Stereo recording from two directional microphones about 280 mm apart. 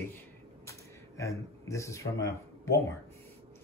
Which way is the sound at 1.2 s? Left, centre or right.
Centre.